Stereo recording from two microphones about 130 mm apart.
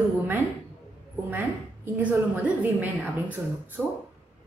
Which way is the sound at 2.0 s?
10° right (ahead or behind).